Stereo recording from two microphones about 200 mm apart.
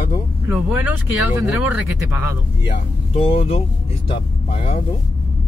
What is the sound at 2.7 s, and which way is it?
Speech, 25° left (ahead or behind).